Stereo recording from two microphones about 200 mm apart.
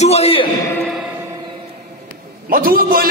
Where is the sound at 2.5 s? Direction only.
45° right (ahead or behind).